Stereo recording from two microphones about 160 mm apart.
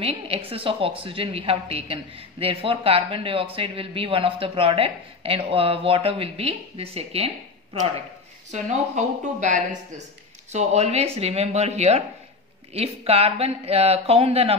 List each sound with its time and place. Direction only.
0.5 s a man's voice: 35° right (ahead or behind)
8.5 s a man's voice: 50° right (ahead or behind)